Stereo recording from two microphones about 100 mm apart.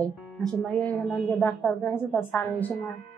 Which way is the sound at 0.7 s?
15° left (ahead or behind).